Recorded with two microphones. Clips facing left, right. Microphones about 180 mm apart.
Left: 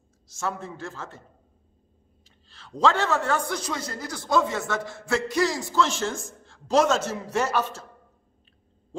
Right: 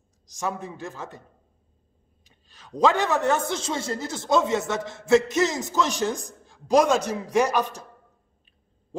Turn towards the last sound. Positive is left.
turn(degrees=-15)  # may be behind; listen again after turning